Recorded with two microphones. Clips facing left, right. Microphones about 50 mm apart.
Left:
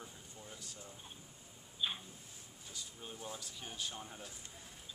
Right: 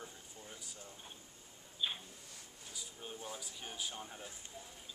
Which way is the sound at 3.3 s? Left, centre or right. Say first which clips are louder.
Right 1 dB; centre.